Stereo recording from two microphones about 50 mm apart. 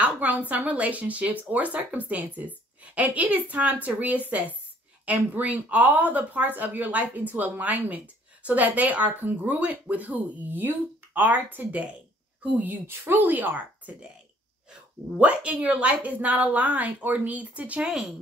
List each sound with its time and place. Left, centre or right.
0.0 s a sound: right
0.5 s a woman's voice: right
13.0 s a woman's voice: right